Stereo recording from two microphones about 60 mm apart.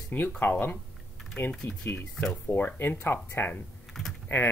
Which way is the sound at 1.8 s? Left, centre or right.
Left.